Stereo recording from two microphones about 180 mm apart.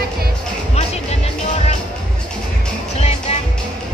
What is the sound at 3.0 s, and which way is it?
Music, 35° left (ahead or behind).